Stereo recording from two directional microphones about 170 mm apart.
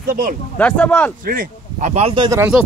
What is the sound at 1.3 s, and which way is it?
Speech, 55° right (ahead or behind).